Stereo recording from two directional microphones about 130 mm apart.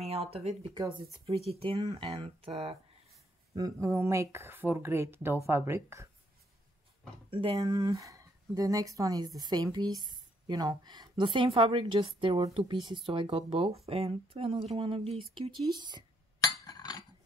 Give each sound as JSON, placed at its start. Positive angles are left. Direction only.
{"t": 0.0, "sound": "speech", "side_deg": -50}
{"t": 3.5, "sound": "speech", "side_deg": -25}
{"t": 7.2, "sound": "speech", "side_deg": -45}
{"t": 7.6, "sound": "a woman's voice", "side_deg": -30}
{"t": 16.6, "sound": "chink", "side_deg": 30}